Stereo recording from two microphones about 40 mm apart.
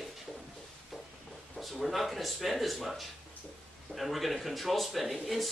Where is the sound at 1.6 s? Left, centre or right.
Centre.